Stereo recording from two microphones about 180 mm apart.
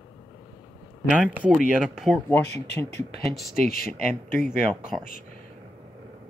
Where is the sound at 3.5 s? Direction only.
55° left (ahead or behind).